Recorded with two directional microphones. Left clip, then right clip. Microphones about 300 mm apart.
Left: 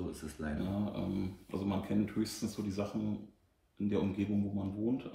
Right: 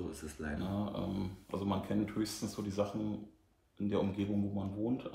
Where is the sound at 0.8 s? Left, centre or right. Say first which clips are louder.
Left 1 dB; centre.